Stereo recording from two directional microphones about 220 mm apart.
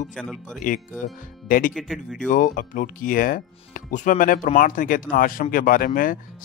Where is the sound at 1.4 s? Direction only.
40° left (ahead or behind).